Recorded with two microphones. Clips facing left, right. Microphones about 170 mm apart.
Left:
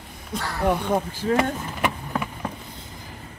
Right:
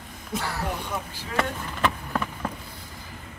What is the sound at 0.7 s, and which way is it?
Speech, 55° left (ahead or behind).